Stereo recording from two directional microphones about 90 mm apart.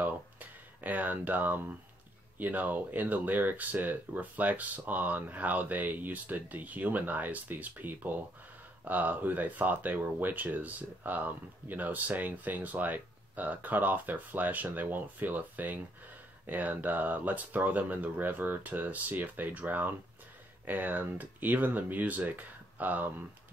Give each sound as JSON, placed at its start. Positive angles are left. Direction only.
{"t": 0.0, "sound": "speech", "side_deg": -20}